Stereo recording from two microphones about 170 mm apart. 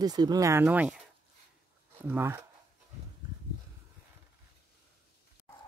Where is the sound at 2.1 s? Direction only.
10° right (ahead or behind).